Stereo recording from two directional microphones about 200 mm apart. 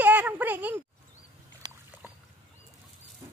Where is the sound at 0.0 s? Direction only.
10° right (ahead or behind).